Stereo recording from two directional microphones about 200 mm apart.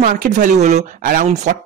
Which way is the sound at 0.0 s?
40° right (ahead or behind).